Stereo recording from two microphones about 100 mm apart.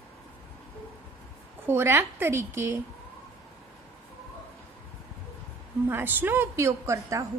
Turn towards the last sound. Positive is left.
turn(degrees=-30)  # may be behind; listen again after turning